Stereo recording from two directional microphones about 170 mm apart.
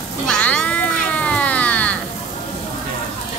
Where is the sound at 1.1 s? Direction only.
10° left (ahead or behind).